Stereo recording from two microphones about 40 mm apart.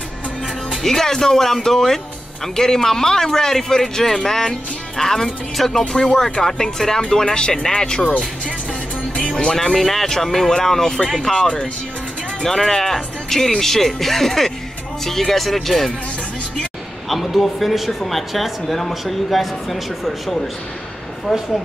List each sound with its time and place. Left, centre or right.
0.8 s speech: centre
9.1 s speech: left
9.8 s speech: centre
17.1 s speech: centre